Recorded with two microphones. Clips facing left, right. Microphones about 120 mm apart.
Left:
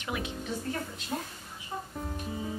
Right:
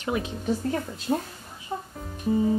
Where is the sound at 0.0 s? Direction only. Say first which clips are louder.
Right 7 dB; 35° right (ahead or behind).